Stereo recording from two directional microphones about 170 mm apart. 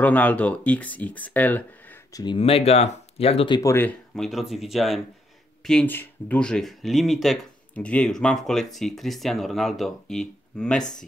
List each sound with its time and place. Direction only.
0.0 s speech: 10° left (ahead or behind)
2.1 s speech: 30° left (ahead or behind)
3.7 s speech: 5° left (ahead or behind)